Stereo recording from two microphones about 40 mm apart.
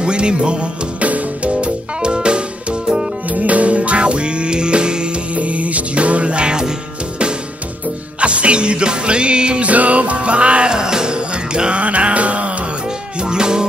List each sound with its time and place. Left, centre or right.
0.0 s music: right
1.0 s music: right
3.3 s music: right
5.3 s music: right
8.2 s music: right
13.2 s music: right